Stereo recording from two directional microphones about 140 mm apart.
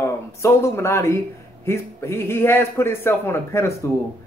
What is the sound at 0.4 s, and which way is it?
A woman's voice, 20° left (ahead or behind).